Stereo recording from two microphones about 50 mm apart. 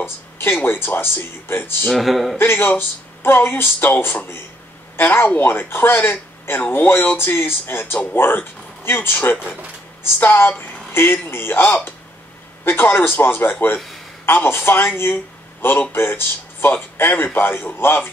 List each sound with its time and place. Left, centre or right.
0.0 s a sound: left
0.6 s speech: left
1.9 s speech: centre
2.3 s speech: left
3.9 s speech: left